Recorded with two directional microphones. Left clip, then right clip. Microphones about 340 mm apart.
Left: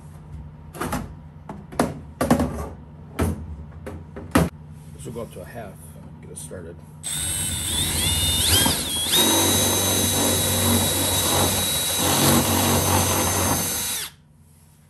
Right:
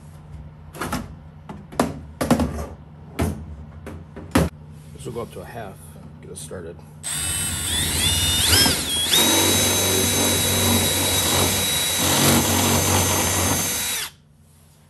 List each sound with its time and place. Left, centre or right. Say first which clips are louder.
0.7 s a sound: even; centre
3.2 s vehicle: even; centre
3.8 s music: left 1 dB; centre
5.1 s speech: right 2 dB; right
7.1 s drill: right 2 dB; centre